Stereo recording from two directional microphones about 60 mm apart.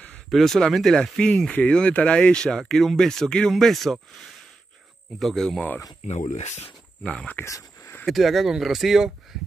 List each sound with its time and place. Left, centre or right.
0.3 s speech: centre
7.4 s a sound: left
8.0 s speech: centre